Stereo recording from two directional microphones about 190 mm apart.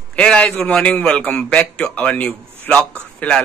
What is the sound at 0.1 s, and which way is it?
A man's voice, 5° left (ahead or behind).